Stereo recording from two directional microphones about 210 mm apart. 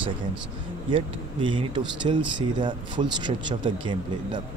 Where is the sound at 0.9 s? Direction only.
25° right (ahead or behind).